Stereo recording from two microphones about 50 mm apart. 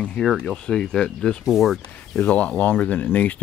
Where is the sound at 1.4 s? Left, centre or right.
Centre.